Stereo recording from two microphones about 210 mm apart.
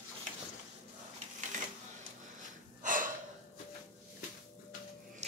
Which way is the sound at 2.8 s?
40° right (ahead or behind).